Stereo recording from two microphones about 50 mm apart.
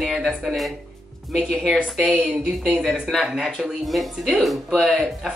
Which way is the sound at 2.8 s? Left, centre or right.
Centre.